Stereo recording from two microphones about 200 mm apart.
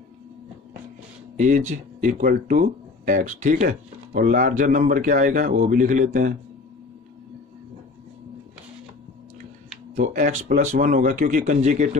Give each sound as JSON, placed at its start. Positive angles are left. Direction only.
{"t": 1.3, "sound": "speech", "side_deg": -40}
{"t": 9.9, "sound": "speech", "side_deg": -40}